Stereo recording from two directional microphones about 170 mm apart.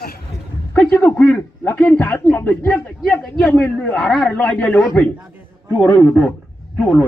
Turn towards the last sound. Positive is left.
turn(degrees=0)  # may be behind; listen again after turning